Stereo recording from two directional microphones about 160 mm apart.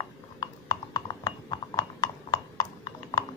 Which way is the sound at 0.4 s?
25° left (ahead or behind).